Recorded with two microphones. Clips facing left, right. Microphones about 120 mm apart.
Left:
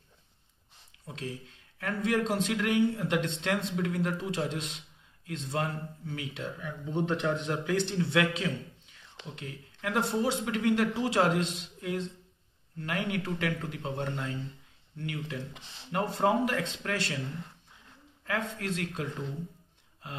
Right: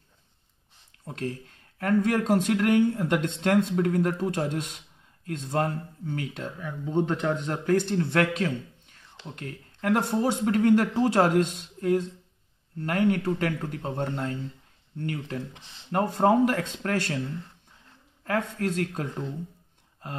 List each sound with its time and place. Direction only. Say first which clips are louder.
1.0 s speech: right 6 dB; 50° right (ahead or behind)
18.2 s speech: right 6 dB; 45° right (ahead or behind)
20.0 s gasp: right 5 dB; 45° right (ahead or behind)